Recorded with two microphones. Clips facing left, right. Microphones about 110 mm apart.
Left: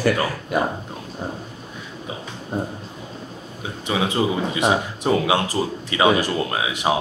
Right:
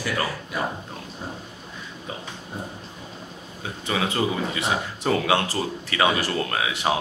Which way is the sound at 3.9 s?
20° left (ahead or behind).